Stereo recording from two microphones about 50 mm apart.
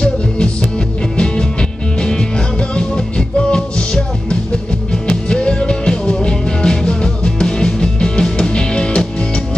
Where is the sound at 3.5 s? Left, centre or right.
Centre.